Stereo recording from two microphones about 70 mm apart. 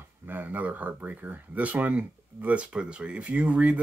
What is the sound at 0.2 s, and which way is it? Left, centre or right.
Speech, right.